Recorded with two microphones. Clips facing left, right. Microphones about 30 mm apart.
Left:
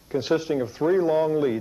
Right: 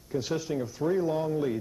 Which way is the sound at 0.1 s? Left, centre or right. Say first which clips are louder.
Left 7 dB; left.